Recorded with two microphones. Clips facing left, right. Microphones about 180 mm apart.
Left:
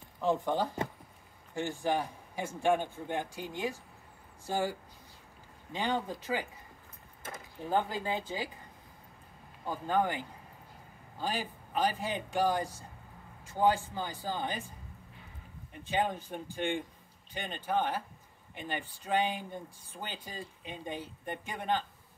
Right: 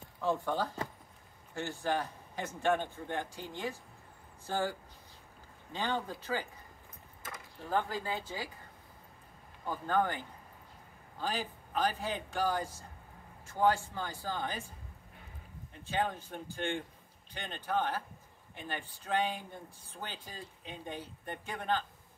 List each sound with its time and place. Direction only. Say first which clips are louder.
0.2 s speech: left 3 dB; 15° left (ahead or behind)
7.2 s speech: left 3 dB; 25° left (ahead or behind)
9.7 s speech: left 1 dB; 15° left (ahead or behind)
15.7 s speech: left 2 dB; 15° left (ahead or behind)